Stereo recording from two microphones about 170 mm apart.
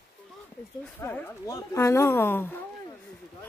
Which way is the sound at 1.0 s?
15° left (ahead or behind).